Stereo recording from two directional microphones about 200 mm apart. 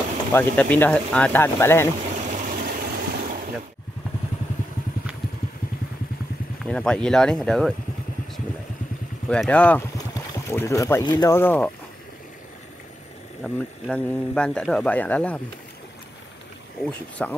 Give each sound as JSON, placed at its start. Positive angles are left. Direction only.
{"t": 0.3, "sound": "speech", "side_deg": 10}
{"t": 2.0, "sound": "vehicle", "side_deg": -35}
{"t": 6.6, "sound": "speech", "side_deg": 5}
{"t": 9.3, "sound": "speech", "side_deg": 5}
{"t": 13.4, "sound": "speech", "side_deg": 5}
{"t": 17.2, "sound": "speech", "side_deg": 5}